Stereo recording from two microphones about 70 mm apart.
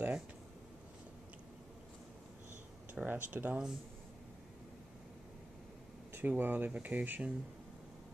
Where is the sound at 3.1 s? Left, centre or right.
Right.